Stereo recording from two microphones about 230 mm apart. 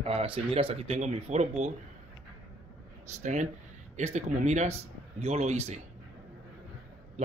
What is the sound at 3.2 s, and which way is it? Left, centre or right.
Speech, right.